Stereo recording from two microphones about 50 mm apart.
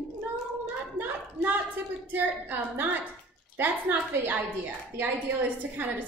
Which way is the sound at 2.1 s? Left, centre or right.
Right.